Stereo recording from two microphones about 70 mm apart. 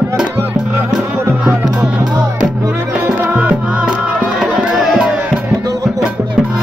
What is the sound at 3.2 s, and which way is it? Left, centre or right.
Music, centre.